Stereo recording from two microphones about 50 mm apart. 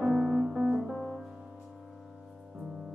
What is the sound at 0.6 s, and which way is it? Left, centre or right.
Music, centre.